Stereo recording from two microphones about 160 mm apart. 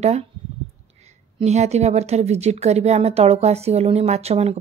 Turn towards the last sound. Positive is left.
turn(degrees=-40)  # may be behind; listen again after turning